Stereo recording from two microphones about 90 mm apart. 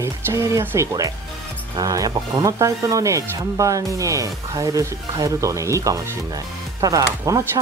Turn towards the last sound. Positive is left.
turn(degrees=-40)  # may be behind; listen again after turning